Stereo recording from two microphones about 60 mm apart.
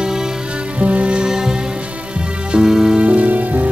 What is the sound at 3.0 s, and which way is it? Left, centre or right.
Music, right.